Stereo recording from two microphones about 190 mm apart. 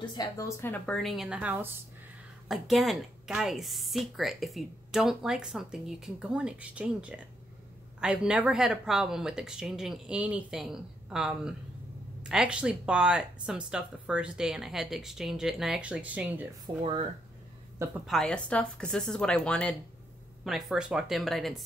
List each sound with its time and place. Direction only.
0.2 s a woman's voice: 15° left (ahead or behind); by 16.4 s 5° right (ahead or behind)
16.7 s speech: 25° right (ahead or behind)
18.0 s a woman's voice: centre (ahead or behind)